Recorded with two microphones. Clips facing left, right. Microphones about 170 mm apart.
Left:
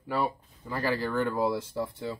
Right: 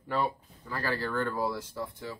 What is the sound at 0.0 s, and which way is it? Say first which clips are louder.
Speech: left 1 dB; 10° left (ahead or behind).